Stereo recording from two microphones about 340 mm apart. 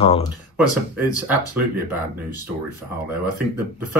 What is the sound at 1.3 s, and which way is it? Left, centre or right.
Speech, centre.